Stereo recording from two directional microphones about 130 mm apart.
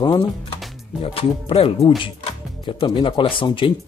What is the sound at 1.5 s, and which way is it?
Speech, 50° left (ahead or behind).